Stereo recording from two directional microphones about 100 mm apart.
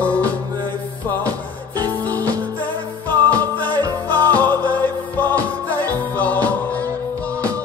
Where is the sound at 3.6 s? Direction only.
40° right (ahead or behind).